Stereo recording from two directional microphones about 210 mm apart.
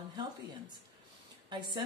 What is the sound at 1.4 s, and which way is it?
Speech, 20° right (ahead or behind).